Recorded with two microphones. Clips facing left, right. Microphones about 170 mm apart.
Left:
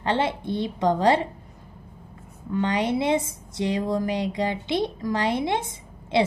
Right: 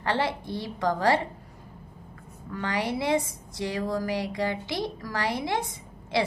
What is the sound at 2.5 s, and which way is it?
A woman's voice, 20° left (ahead or behind).